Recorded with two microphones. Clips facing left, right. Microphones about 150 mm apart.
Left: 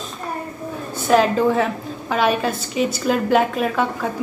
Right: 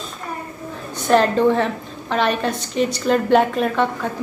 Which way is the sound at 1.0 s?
5° left (ahead or behind).